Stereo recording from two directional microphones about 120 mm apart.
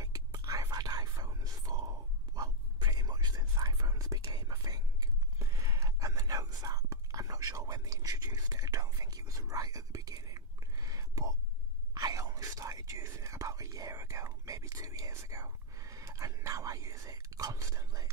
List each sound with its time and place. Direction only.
0.0 s whispering: 30° right (ahead or behind)